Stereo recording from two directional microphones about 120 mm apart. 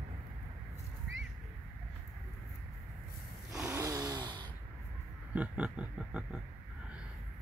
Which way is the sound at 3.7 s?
25° right (ahead or behind).